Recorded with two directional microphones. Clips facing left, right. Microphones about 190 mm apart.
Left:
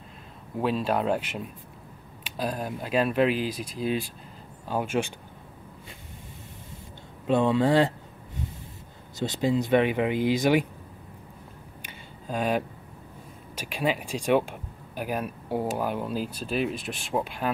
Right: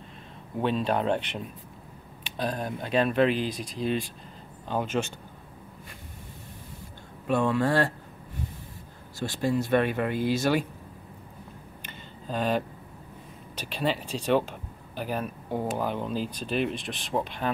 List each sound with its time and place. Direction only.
0.6 s speech: 5° left (ahead or behind)
7.2 s speech: 20° left (ahead or behind)
9.2 s speech: 20° left (ahead or behind)
11.8 s a sound: 10° left (ahead or behind)
13.6 s speech: 10° left (ahead or behind)